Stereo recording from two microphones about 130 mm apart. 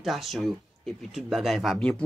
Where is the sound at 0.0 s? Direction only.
Centre (ahead or behind).